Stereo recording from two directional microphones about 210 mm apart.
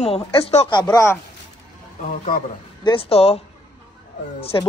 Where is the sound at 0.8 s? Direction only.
10° left (ahead or behind).